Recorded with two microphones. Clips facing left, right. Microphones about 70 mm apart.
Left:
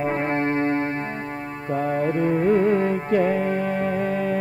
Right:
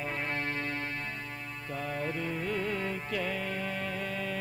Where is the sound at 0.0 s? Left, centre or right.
Left.